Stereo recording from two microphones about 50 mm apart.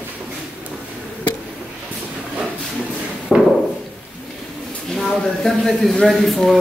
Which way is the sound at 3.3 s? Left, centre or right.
Centre.